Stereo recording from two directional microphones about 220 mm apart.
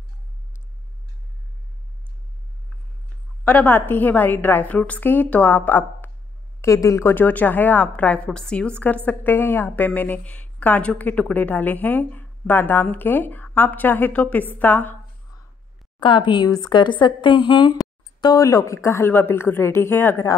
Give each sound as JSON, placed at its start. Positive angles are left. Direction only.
{"t": 3.4, "sound": "a woman's voice", "side_deg": 10}
{"t": 16.0, "sound": "a woman's voice", "side_deg": 20}